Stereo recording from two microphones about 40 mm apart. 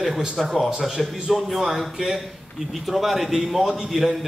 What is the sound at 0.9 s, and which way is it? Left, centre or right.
A man's voice, centre.